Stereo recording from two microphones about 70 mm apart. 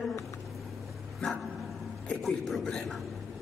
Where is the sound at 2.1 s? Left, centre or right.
Centre.